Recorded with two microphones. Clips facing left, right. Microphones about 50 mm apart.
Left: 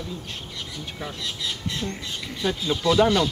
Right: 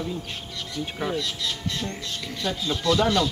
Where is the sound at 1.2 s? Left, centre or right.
Centre.